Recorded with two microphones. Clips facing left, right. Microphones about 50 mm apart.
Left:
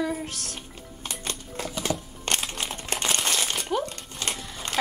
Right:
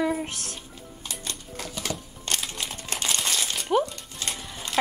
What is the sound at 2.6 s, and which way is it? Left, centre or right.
Crumpling, left.